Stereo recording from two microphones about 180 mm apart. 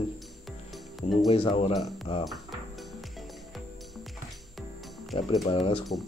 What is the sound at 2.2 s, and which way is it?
Music, centre (ahead or behind).